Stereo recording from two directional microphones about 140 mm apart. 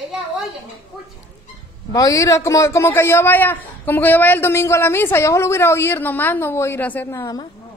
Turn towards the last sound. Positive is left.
turn(degrees=25)  # may be behind; listen again after turning